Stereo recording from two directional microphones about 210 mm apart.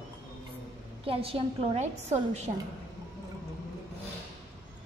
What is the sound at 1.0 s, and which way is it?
A woman's voice, 25° right (ahead or behind).